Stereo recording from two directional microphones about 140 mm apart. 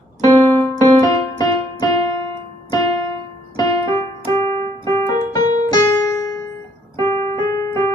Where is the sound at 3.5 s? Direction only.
25° left (ahead or behind).